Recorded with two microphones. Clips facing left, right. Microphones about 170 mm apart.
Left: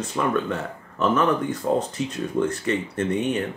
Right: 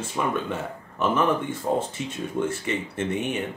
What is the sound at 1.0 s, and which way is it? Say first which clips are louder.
Speech: left 2 dB; 5° right (ahead or behind).